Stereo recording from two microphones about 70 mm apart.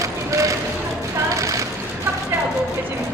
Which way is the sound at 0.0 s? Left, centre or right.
Right.